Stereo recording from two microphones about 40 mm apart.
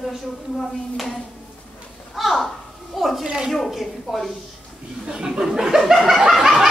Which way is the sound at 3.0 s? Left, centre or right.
Centre.